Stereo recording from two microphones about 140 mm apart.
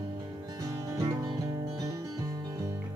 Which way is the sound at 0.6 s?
25° right (ahead or behind).